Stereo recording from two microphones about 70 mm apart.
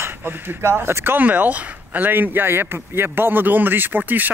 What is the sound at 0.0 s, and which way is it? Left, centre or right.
Speech, right.